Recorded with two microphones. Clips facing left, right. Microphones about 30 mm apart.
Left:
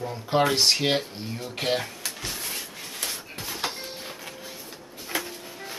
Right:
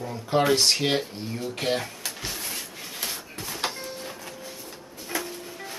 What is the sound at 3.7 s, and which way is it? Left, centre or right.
Music, left.